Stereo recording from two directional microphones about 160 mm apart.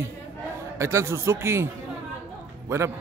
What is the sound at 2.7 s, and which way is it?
Speech, 15° right (ahead or behind).